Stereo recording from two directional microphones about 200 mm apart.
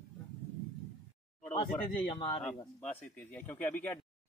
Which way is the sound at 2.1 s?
25° left (ahead or behind).